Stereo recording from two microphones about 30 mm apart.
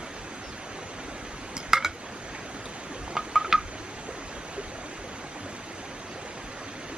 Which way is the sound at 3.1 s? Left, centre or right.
Centre.